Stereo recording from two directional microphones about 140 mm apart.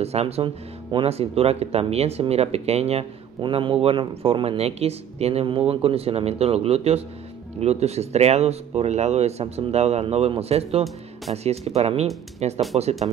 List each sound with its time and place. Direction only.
0.0 s a man's voice: 45° right (ahead or behind)
3.3 s a man's voice: 35° right (ahead or behind)